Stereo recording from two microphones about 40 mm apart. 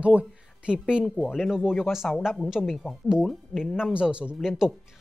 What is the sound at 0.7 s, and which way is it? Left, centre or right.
Speech, right.